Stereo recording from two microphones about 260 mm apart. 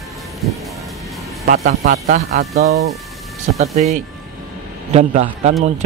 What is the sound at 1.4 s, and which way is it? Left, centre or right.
Speech, right.